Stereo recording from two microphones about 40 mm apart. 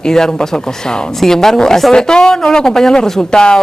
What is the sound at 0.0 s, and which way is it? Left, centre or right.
A woman's voice, centre.